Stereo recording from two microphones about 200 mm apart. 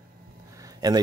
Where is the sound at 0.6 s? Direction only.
20° right (ahead or behind).